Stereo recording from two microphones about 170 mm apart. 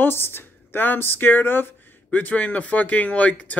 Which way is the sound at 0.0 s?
15° left (ahead or behind).